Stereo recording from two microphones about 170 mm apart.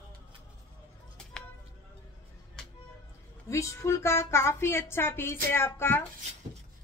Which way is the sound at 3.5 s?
15° left (ahead or behind).